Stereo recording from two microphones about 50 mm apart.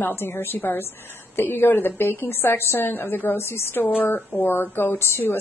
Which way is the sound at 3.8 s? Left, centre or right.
Left.